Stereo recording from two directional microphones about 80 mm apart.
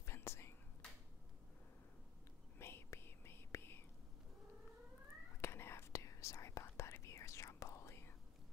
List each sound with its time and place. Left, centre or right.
0.0 s whispering: left
2.6 s whispering: left
5.4 s whispering: left